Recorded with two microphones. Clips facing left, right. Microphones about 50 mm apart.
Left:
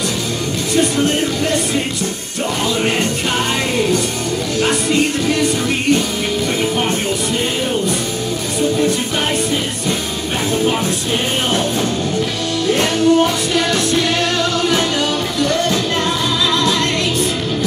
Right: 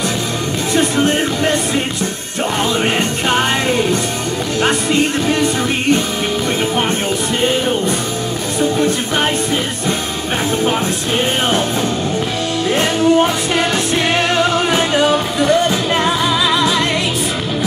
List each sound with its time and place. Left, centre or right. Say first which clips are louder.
0.7 s music: right 1 dB; right
2.8 s music: right 1 dB; right
12.7 s music: right 1 dB; right